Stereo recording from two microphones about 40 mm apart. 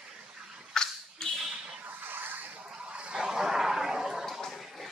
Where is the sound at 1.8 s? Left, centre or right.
Right.